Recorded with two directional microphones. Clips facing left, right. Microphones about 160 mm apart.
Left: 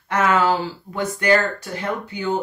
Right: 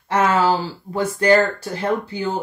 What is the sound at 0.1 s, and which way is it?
Speech, 30° right (ahead or behind).